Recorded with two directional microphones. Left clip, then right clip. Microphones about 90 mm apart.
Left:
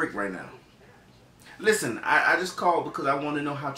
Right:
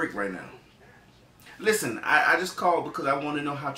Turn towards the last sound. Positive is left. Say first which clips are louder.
# even
turn(degrees=5)  # may be behind; listen again after turning